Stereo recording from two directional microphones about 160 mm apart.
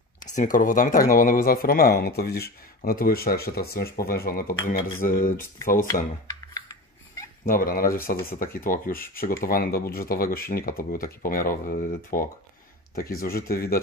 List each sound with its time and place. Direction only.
0.3 s speech: 55° left (ahead or behind)
6.2 s a sound: 20° left (ahead or behind)
7.4 s speech: 65° left (ahead or behind)